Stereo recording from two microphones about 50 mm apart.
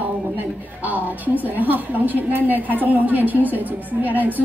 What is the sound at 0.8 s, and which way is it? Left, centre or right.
A woman's voice, right.